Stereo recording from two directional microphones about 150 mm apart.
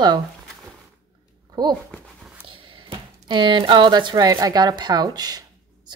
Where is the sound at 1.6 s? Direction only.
30° right (ahead or behind).